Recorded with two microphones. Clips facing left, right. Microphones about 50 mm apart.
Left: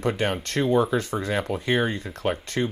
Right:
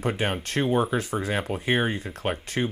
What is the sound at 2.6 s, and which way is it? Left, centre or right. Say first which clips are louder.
Speech: even; right.